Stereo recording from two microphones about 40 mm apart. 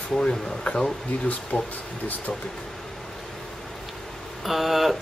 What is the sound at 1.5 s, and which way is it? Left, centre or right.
Speech, left.